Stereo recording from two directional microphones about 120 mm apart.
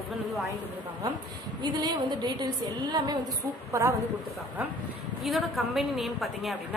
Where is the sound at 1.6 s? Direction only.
40° right (ahead or behind).